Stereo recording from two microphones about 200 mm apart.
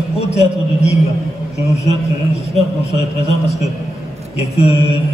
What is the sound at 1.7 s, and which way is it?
A man's voice, 30° left (ahead or behind).